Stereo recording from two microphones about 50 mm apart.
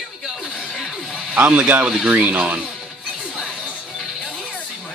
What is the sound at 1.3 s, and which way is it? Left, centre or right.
A man's voice, right.